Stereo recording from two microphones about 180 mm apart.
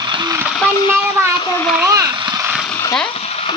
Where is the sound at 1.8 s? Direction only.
20° right (ahead or behind).